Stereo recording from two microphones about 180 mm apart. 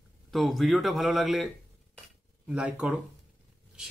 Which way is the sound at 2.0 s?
5° right (ahead or behind).